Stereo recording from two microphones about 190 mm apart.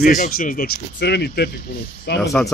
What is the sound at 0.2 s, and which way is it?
Speech, 45° left (ahead or behind).